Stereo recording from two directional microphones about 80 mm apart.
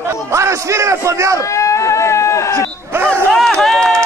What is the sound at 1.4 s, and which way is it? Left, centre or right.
Speech, left.